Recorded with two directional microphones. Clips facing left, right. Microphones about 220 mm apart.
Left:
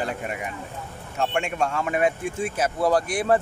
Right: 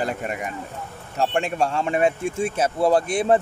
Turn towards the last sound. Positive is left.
turn(degrees=-25)  # may be behind; listen again after turning